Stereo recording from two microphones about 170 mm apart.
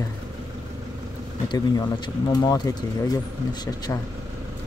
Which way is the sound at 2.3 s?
20° left (ahead or behind).